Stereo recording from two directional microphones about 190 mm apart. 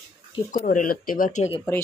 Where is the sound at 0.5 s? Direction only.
45° left (ahead or behind).